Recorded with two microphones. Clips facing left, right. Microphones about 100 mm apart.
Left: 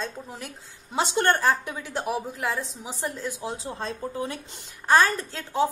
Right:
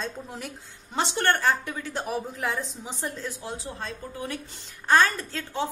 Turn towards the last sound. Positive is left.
turn(degrees=10)  # may be behind; listen again after turning